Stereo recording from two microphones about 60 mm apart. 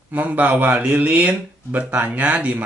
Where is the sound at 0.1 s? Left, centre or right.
Right.